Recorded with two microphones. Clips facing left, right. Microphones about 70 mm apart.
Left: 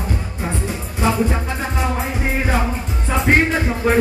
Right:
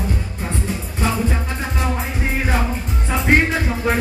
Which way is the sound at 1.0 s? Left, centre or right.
Centre.